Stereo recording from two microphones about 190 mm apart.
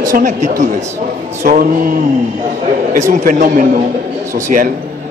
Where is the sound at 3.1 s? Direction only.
45° right (ahead or behind).